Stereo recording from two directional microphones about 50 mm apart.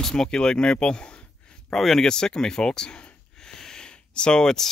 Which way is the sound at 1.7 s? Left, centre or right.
Centre.